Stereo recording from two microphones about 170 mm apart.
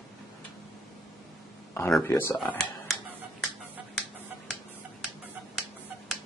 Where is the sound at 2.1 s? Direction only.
15° left (ahead or behind).